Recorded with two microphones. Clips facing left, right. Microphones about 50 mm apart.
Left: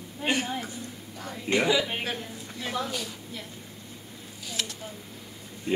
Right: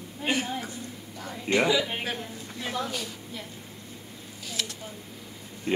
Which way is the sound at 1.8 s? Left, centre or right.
Centre.